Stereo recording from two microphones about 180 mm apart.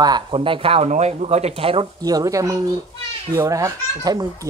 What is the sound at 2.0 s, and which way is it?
A child's voice, 20° right (ahead or behind).